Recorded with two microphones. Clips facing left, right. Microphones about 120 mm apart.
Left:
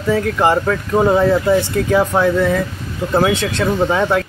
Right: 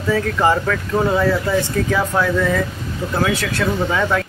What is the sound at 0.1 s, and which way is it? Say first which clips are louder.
Speech: left 2 dB; 15° left (ahead or behind).